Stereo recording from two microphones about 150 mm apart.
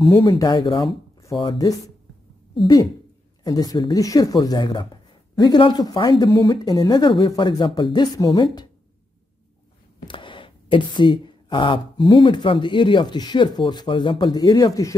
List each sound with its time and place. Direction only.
0.3 s speech: 30° left (ahead or behind)
10.0 s a woman's voice: 35° left (ahead or behind)